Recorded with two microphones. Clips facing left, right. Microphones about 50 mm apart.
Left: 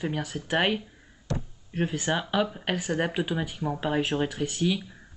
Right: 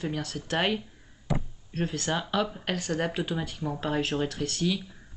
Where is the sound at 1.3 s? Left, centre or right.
Centre.